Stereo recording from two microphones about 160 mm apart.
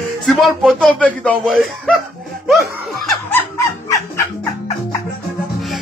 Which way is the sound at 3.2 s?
20° left (ahead or behind).